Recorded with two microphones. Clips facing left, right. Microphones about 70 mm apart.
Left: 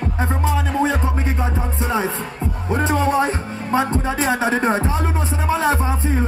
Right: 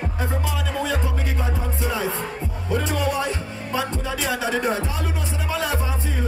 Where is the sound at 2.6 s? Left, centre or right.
Left.